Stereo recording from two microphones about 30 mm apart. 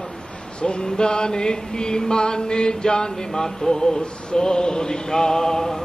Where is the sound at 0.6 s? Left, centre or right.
Left.